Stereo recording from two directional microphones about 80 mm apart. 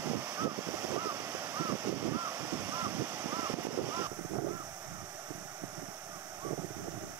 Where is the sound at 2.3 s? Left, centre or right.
Right.